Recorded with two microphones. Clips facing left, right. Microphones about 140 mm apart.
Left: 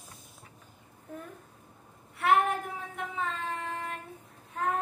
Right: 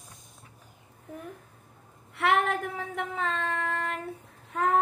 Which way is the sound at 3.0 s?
65° right (ahead or behind).